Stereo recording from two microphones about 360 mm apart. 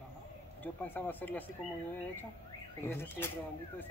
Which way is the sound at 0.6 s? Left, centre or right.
Centre.